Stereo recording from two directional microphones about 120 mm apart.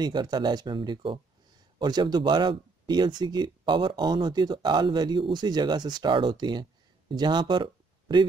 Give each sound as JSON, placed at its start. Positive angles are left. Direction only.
{"t": 0.0, "sound": "speech", "side_deg": -35}